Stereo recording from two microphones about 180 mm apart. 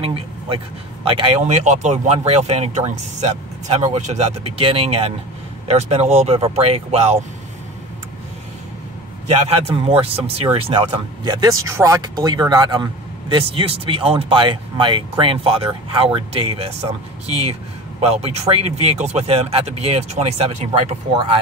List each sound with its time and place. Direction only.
0.0 s a sound: 30° right (ahead or behind)
1.0 s speech: 30° right (ahead or behind)
9.3 s speech: 30° right (ahead or behind)